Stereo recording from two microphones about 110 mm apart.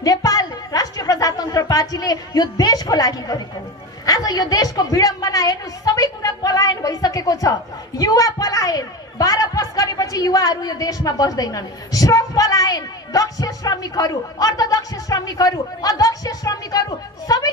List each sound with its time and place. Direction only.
0.0 s music: 35° left (ahead or behind)
4.0 s a woman's voice: 35° left (ahead or behind)